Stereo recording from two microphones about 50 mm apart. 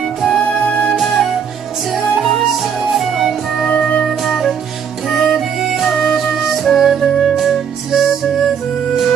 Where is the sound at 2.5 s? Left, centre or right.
Centre.